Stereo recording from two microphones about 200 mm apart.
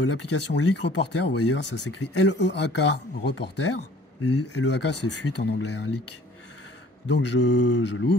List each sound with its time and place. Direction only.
0.0 s speech: 60° left (ahead or behind)
7.1 s speech: 60° left (ahead or behind)